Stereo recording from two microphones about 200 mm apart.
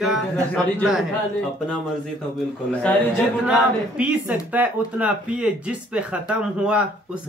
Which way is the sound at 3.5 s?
5° right (ahead or behind).